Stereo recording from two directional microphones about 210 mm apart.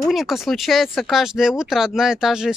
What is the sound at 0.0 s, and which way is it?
Speech, centre (ahead or behind).